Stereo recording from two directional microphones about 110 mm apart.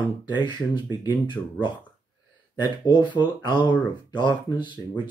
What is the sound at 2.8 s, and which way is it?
Speech, 45° left (ahead or behind).